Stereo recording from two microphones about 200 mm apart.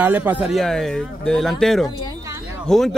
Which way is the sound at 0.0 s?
10° right (ahead or behind).